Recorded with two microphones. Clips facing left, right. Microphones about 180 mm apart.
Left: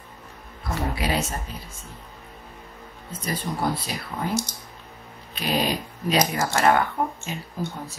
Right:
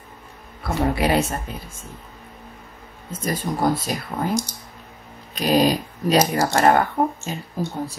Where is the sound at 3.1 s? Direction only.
45° right (ahead or behind).